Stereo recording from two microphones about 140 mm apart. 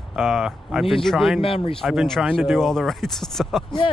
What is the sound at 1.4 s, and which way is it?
Speech, 40° left (ahead or behind).